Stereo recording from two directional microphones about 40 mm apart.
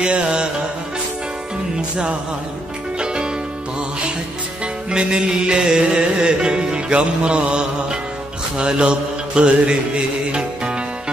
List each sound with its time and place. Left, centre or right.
0.0 s music: right
1.8 s music: right
4.9 s music: right